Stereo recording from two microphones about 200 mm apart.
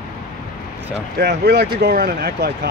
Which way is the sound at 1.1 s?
55° right (ahead or behind).